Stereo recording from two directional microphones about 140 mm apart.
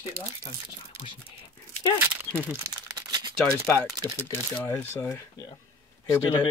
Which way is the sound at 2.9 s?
30° right (ahead or behind).